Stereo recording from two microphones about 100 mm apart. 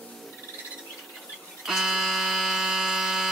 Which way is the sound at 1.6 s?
5° right (ahead or behind).